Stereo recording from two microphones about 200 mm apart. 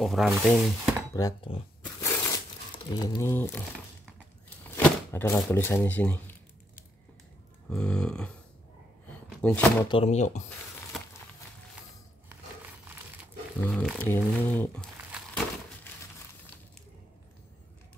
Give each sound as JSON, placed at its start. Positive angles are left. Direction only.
{"t": 0.0, "sound": "speech", "side_deg": 0}
{"t": 1.1, "sound": "speech", "side_deg": 20}
{"t": 2.0, "sound": "a sound", "side_deg": 15}
{"t": 2.9, "sound": "speech", "side_deg": 20}
{"t": 7.7, "sound": "speech", "side_deg": 5}
{"t": 9.0, "sound": "a sound", "side_deg": 10}
{"t": 9.8, "sound": "speech", "side_deg": 30}
{"t": 13.2, "sound": "speech", "side_deg": 0}